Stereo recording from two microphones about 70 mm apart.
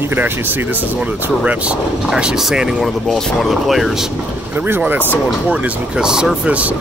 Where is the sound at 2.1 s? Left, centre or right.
Centre.